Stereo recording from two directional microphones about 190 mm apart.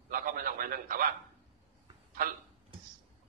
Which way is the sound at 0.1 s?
50° right (ahead or behind).